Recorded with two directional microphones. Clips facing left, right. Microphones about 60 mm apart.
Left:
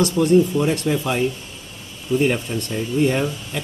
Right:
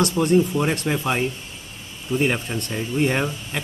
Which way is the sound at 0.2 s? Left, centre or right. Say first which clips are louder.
Left 4 dB; right.